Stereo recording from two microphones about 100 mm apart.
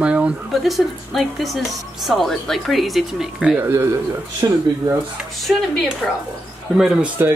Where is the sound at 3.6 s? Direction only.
25° right (ahead or behind).